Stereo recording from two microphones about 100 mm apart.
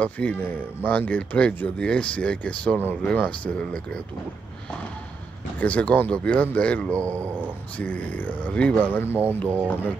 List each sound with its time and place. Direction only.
0.0 s speech: 15° left (ahead or behind)
5.6 s speech: 15° left (ahead or behind)
7.0 s speech: 30° right (ahead or behind)
7.7 s speech: 15° left (ahead or behind)
9.1 s speech: 15° right (ahead or behind)